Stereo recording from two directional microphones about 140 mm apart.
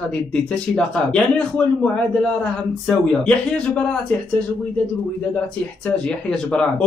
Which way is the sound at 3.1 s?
10° left (ahead or behind).